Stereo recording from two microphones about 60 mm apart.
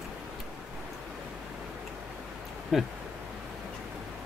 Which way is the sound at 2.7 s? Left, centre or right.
Centre.